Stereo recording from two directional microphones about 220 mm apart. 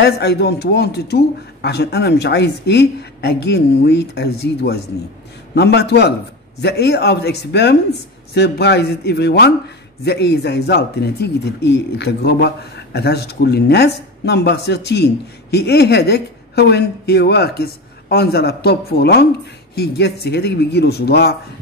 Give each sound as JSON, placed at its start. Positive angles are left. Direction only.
{"t": 0.0, "sound": "speech", "side_deg": 45}